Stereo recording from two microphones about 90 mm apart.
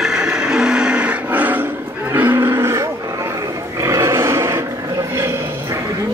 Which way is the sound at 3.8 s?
35° right (ahead or behind).